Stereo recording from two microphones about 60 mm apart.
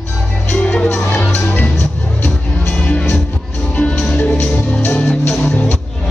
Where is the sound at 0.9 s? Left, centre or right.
Left.